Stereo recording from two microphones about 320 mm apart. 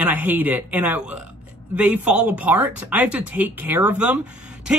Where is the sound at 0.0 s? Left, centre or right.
Centre.